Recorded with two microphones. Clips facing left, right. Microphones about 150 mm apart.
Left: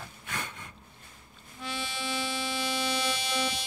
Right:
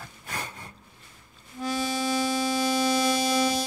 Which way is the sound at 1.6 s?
40° right (ahead or behind).